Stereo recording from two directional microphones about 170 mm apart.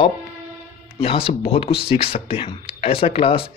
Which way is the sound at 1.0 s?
35° left (ahead or behind).